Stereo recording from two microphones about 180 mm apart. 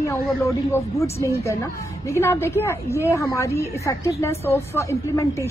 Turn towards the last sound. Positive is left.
turn(degrees=15)  # may be behind; listen again after turning